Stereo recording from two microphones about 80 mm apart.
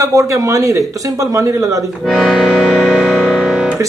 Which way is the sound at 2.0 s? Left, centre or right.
Centre.